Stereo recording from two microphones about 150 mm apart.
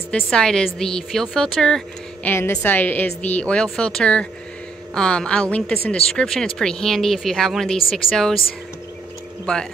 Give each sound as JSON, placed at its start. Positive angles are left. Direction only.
{"t": 0.1, "sound": "speech", "side_deg": 5}
{"t": 2.2, "sound": "a woman's voice", "side_deg": 15}